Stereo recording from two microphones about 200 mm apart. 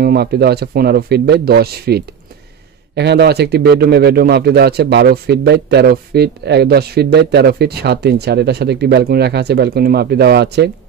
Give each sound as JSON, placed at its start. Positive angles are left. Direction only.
{"t": 0.0, "sound": "speech", "side_deg": -50}